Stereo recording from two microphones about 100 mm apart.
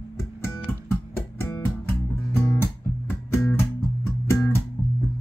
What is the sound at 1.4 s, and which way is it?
Music, 25° left (ahead or behind).